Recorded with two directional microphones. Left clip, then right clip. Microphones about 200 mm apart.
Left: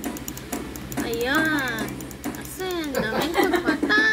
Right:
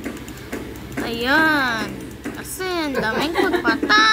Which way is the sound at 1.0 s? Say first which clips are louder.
Right 5 dB; 30° right (ahead or behind).